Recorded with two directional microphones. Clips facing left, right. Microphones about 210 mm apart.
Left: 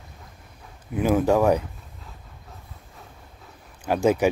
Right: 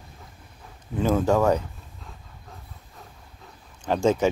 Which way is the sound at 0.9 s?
10° left (ahead or behind).